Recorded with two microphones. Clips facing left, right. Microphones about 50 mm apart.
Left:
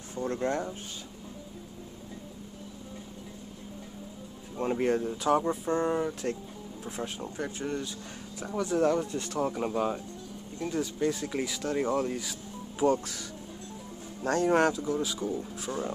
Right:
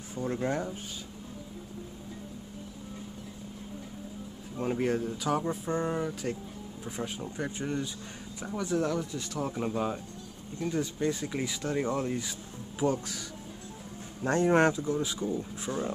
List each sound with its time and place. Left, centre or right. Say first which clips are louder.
0.1 s speech: left 1 dB; centre
4.6 s speech: left 2 dB; centre
7.3 s speech: even; centre
8.7 s speech: left 4 dB; left
9.0 s speech: left 3 dB; left
9.5 s speech: left 2 dB; centre
14.2 s speech: even; right
15.7 s speech: right 1 dB; centre